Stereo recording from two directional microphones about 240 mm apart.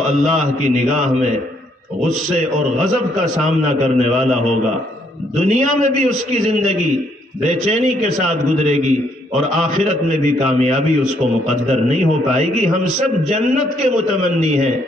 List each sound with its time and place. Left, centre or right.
0.3 s a man's voice: right
3.8 s a man's voice: right
5.4 s a man's voice: right
14.4 s a man's voice: right